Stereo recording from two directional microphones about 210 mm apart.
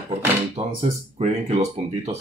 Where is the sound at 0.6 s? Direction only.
25° right (ahead or behind).